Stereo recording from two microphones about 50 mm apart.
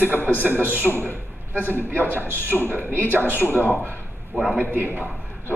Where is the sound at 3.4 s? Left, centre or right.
Left.